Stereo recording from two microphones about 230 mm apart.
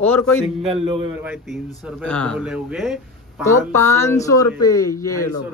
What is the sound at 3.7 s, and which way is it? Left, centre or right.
Speech, centre.